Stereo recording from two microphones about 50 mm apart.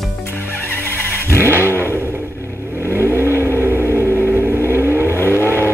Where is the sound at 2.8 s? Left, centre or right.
Right.